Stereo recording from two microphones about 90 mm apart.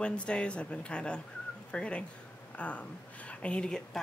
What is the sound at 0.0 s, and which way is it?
Speech, 10° left (ahead or behind).